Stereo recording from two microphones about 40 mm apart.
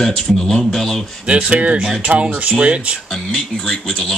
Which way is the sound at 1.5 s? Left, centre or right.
Right.